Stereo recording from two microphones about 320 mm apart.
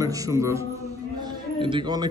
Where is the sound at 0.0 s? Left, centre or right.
Centre.